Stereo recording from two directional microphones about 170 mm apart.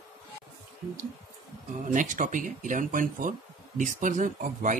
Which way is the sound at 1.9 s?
50° right (ahead or behind).